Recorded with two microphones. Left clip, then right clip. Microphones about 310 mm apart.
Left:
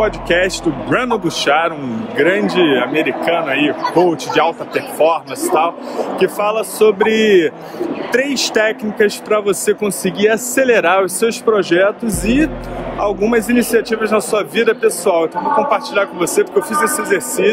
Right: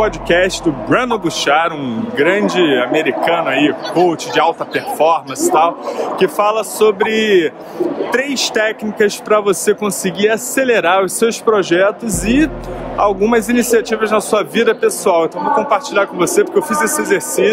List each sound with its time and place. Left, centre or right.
0.0 s speech: centre
3.8 s speech: centre
4.1 s a man's voice: centre